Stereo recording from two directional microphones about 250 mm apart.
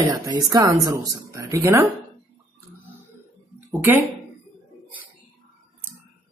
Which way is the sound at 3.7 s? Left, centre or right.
Centre.